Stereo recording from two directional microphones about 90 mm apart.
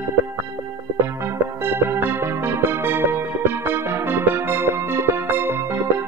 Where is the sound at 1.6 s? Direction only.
25° right (ahead or behind).